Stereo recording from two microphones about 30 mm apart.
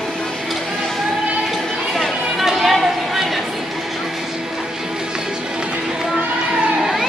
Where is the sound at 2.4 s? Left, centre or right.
Centre.